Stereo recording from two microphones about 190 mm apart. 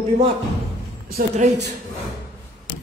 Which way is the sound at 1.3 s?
40° right (ahead or behind).